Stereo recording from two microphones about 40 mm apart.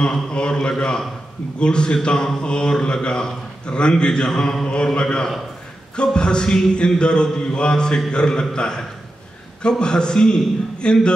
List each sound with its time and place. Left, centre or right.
0.0 s a man's voice: left
5.0 s a man's voice: centre